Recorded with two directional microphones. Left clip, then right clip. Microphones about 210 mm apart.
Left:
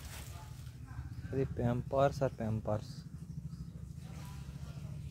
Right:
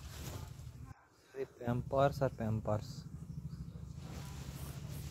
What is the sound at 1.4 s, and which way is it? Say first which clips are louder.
Speech: left 4 dB; 10° right (ahead or behind).